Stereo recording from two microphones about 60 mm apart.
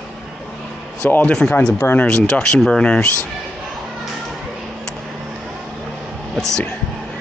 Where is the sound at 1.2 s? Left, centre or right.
Centre.